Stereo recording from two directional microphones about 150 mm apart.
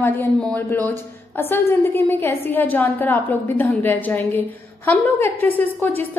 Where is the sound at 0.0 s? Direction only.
15° left (ahead or behind).